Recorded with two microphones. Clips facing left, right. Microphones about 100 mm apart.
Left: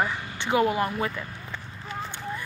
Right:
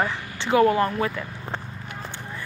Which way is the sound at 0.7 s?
35° right (ahead or behind).